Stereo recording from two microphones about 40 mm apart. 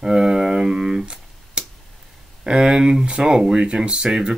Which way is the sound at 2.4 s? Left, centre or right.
Centre.